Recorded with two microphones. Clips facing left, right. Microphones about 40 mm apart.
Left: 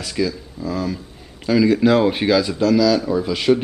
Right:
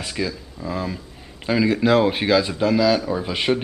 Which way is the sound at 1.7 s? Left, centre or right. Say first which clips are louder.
Right 1 dB; centre.